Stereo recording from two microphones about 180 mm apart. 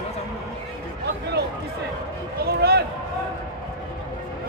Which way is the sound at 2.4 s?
60° right (ahead or behind).